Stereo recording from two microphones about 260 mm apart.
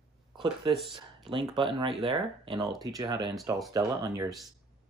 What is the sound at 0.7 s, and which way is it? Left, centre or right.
Speech, centre.